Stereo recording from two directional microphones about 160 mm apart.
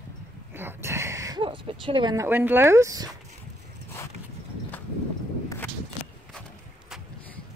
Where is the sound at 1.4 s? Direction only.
30° right (ahead or behind).